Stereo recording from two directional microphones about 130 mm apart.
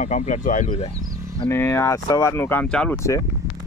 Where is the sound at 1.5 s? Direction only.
20° left (ahead or behind).